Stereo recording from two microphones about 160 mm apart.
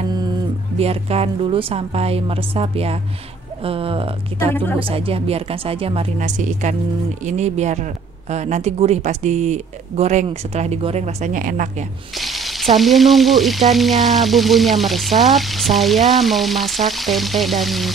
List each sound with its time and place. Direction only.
0.7 s a woman's voice: 40° right (ahead or behind)
6.1 s speech: 50° right (ahead or behind)
12.2 s frying: centre (ahead or behind)